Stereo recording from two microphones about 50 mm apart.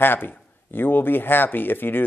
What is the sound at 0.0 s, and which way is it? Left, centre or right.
A man's voice, left.